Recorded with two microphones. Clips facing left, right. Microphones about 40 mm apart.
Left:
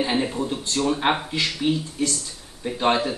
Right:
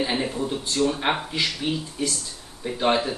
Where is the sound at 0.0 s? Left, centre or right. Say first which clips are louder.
Left 2 dB; centre.